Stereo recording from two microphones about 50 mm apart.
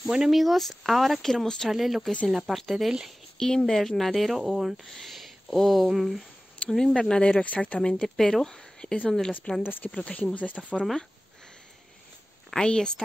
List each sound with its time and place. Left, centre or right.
0.0 s speech: centre
1.7 s speech: centre
3.3 s speech: centre
4.8 s a woman's voice: centre
7.0 s speech: centre
7.8 s a woman's voice: centre
9.6 s speech: left
9.8 s speech: left
12.4 s a woman's voice: centre